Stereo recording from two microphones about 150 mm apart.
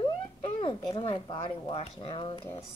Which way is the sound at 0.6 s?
35° left (ahead or behind).